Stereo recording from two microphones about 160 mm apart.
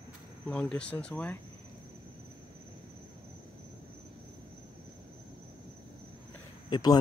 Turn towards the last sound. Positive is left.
turn(degrees=25)  # may be behind; listen again after turning